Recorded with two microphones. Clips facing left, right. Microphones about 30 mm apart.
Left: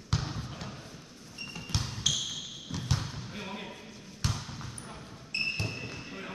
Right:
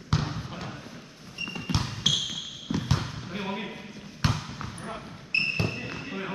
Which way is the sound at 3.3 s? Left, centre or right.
Right.